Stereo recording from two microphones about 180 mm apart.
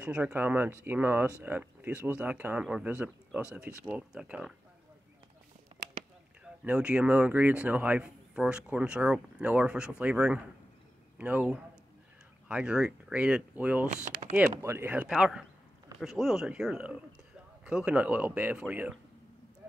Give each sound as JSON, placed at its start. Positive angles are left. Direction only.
{"t": 0.0, "sound": "speech", "side_deg": -10}
{"t": 6.6, "sound": "speech", "side_deg": -5}
{"t": 14.0, "sound": "typing", "side_deg": -40}
{"t": 14.5, "sound": "speech", "side_deg": -15}